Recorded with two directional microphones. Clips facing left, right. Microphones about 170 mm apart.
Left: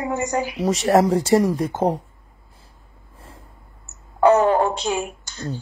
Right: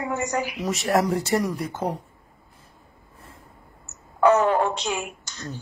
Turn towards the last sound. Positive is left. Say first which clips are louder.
# left 6 dB
turn(degrees=30)  # may be behind; listen again after turning